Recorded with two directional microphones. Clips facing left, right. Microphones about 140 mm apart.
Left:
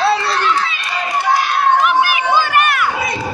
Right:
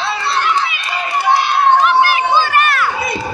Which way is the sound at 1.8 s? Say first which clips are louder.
Right 2 dB; 15° left (ahead or behind).